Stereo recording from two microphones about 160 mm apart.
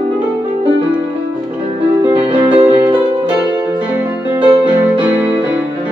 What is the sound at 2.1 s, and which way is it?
Music, 35° right (ahead or behind).